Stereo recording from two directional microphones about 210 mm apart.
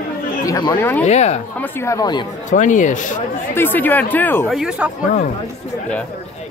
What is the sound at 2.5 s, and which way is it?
Speech, 35° left (ahead or behind).